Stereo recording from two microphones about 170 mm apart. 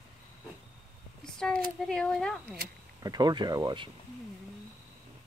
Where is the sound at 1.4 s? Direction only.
5° left (ahead or behind).